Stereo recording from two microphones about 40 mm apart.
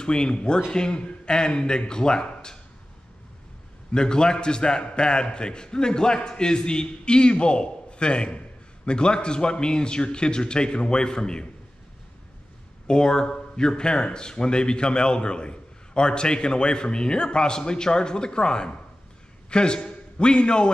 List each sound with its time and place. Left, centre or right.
0.0 s a man's voice: left
3.9 s a man's voice: left
12.8 s a man's voice: left